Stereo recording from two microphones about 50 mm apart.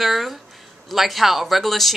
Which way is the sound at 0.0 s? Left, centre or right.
Centre.